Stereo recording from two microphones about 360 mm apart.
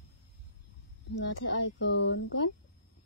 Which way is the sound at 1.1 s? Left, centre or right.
Left.